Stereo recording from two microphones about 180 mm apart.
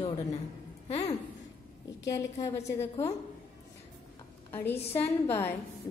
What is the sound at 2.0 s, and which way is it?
Speech, 20° left (ahead or behind).